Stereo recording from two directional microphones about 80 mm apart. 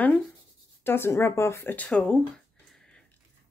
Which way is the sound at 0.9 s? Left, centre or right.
Left.